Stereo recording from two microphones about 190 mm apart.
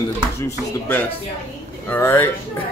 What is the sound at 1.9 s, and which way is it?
Speech, 10° left (ahead or behind).